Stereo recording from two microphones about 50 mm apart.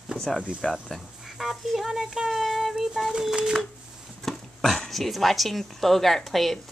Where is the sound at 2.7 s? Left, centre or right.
Centre.